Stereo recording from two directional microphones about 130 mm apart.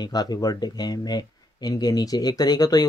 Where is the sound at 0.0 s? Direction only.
30° left (ahead or behind).